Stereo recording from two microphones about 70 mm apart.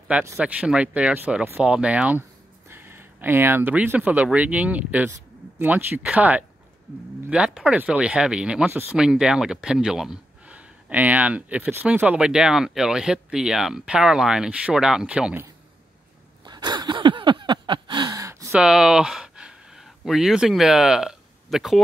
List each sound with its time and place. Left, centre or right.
0.4 s speech: centre
2.7 s a sound: right
3.7 s speech: right
7.2 s speech: centre
10.4 s speech: centre
12.3 s speech: centre
16.4 s a sound: right
18.1 s gasp: right
18.5 s speech: centre